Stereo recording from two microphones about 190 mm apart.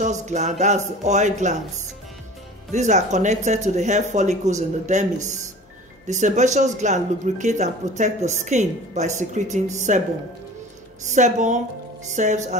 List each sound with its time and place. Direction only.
0.0 s speech: 40° right (ahead or behind)
2.7 s speech: 40° right (ahead or behind)
11.1 s speech: 40° right (ahead or behind)